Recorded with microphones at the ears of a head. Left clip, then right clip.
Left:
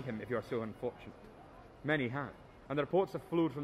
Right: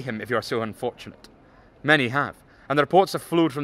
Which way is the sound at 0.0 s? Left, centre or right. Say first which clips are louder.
Right 12 dB; right.